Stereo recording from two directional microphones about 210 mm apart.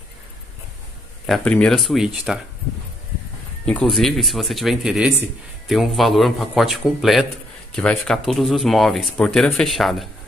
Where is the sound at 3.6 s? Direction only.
5° left (ahead or behind).